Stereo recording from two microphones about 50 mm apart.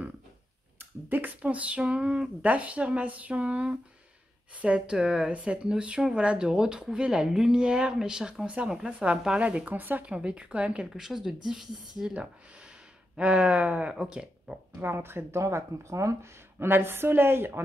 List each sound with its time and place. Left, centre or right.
0.7 s speech: right; by 9.4 s centre
9.7 s speech: right
10.0 s speech: right
11.0 s speech: centre
13.1 s speech: centre
14.8 s a woman's voice: right
15.3 s speech: right
16.5 s a woman's voice: right